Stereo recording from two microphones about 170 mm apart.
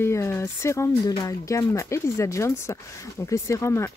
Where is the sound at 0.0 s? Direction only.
15° left (ahead or behind).